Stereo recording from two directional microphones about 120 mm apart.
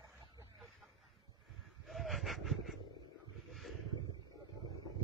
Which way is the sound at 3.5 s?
Centre (ahead or behind).